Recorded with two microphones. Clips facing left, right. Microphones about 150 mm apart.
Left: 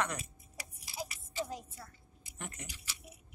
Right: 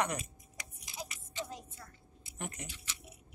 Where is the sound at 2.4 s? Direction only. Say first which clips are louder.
Right 3 dB; 20° right (ahead or behind).